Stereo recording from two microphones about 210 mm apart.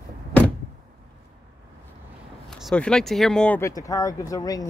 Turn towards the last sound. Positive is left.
turn(degrees=15)  # may be behind; listen again after turning